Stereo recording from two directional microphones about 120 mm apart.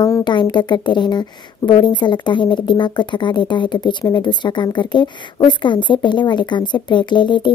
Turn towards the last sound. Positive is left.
turn(degrees=40)  # may be behind; listen again after turning